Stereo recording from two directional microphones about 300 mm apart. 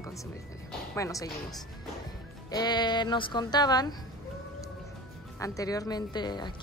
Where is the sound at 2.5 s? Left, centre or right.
Centre.